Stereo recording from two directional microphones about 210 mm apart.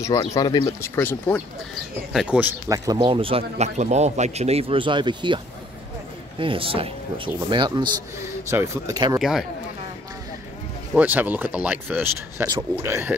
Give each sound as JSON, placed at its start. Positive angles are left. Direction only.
{"t": 0.0, "sound": "speech", "side_deg": 20}
{"t": 2.1, "sound": "speech", "side_deg": -5}
{"t": 6.4, "sound": "speech", "side_deg": -25}
{"t": 9.2, "sound": "speech", "side_deg": 0}
{"t": 11.0, "sound": "speech", "side_deg": -10}